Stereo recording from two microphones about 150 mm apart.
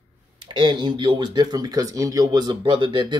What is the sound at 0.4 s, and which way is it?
Speech, 30° right (ahead or behind).